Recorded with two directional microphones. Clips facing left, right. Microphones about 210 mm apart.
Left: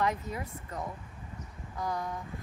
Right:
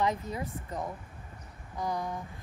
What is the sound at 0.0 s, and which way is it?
Speech, 25° right (ahead or behind).